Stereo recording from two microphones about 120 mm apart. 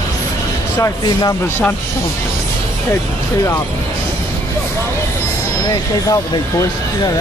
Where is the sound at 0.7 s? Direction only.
30° left (ahead or behind).